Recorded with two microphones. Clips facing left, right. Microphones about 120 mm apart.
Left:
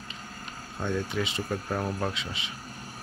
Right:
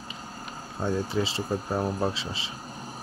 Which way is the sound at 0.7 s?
35° right (ahead or behind).